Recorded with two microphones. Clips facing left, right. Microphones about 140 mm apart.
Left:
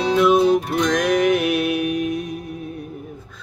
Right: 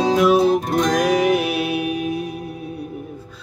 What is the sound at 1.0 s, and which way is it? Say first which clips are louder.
Music: left 1 dB; 5° right (ahead or behind).